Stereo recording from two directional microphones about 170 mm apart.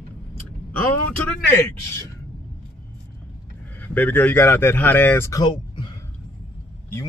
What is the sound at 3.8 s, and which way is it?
Speech, 10° left (ahead or behind).